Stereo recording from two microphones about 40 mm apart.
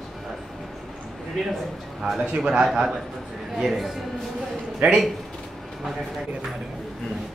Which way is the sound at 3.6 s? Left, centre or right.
Centre.